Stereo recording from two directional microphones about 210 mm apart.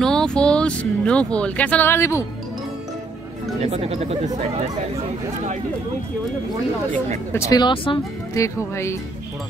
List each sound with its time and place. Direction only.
0.0 s speech: 5° left (ahead or behind)
3.6 s speech: 30° right (ahead or behind)
7.3 s speech: 15° left (ahead or behind)